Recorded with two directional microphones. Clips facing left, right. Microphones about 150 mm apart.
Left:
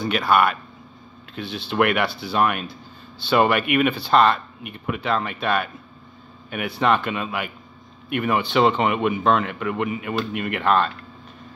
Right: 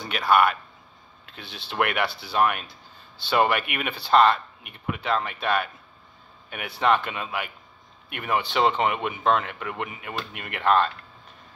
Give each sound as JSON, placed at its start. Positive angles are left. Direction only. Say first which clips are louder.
{"t": 0.1, "sound": "speech", "louder": "even", "side_deg": -25}